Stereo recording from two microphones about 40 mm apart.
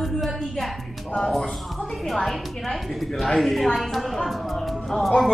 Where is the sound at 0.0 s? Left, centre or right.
Centre.